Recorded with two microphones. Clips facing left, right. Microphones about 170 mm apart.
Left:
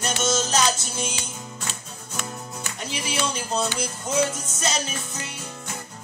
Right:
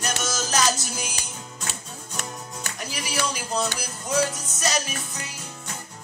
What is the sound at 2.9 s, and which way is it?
Speech, 25° left (ahead or behind).